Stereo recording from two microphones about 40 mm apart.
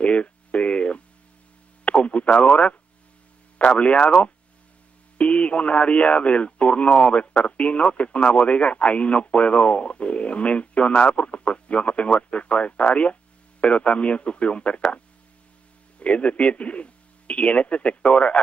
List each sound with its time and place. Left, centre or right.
0.0 s telephone: left
1.9 s radio: left
3.5 s speech: left
5.1 s speech: left
16.0 s speech: left